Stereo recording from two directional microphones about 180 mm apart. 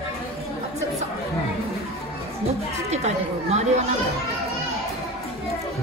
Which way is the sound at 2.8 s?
35° right (ahead or behind).